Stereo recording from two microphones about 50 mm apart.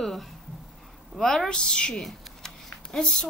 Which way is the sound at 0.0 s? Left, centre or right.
Centre.